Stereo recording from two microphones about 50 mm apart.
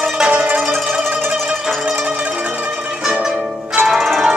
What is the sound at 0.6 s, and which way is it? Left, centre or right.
Music, centre.